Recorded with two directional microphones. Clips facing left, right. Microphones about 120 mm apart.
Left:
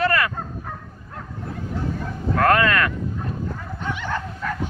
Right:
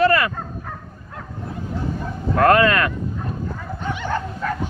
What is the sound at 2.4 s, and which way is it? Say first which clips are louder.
Speech: right 3 dB; 15° right (ahead or behind).